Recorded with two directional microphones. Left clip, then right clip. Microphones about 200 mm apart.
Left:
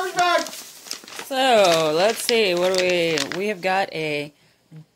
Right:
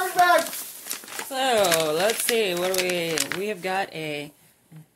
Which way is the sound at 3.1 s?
5° left (ahead or behind).